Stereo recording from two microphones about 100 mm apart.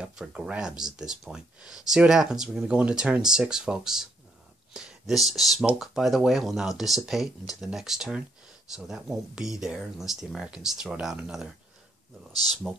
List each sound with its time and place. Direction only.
0.0 s speech: 10° right (ahead or behind)
12.6 s speech: centre (ahead or behind)